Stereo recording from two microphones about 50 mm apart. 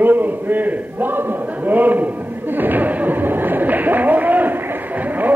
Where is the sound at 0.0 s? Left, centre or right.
Right.